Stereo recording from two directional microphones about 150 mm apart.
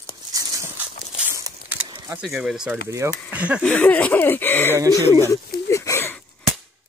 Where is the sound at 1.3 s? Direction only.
20° right (ahead or behind).